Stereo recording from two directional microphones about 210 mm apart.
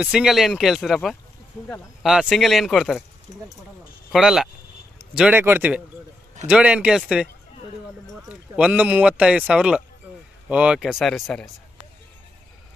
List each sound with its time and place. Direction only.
0.0 s speech: 5° right (ahead or behind)
3.3 s speech: 30° left (ahead or behind)
4.1 s speech: centre (ahead or behind)